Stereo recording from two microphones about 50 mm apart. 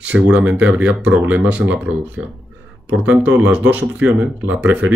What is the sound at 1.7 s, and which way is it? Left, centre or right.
Speech, right.